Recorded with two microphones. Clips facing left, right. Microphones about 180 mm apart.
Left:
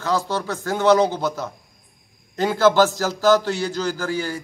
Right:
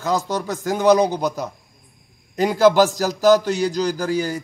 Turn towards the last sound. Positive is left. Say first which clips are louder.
# right 3 dB
turn(degrees=-15)  # may be behind; listen again after turning